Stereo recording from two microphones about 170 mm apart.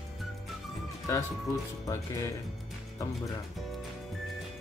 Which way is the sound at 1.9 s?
20° left (ahead or behind).